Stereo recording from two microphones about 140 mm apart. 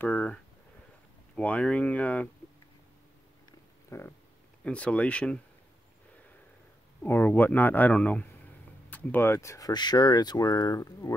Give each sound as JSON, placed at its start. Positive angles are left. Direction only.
{"t": 0.0, "sound": "speech", "side_deg": 10}
{"t": 3.9, "sound": "speech", "side_deg": 20}
{"t": 4.6, "sound": "speech", "side_deg": 10}
{"t": 7.0, "sound": "speech", "side_deg": 10}